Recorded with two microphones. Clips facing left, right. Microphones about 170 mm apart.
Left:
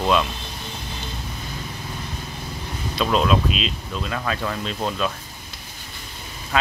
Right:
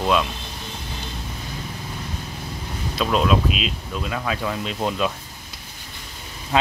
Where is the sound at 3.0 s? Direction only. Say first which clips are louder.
Even; 5° right (ahead or behind).